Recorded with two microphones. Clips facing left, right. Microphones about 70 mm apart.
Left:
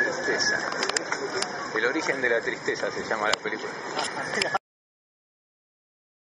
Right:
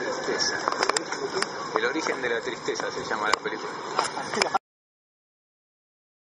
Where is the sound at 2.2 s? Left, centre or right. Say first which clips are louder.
Left 3 dB; left.